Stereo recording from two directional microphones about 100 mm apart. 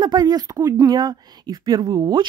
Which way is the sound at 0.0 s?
45° right (ahead or behind).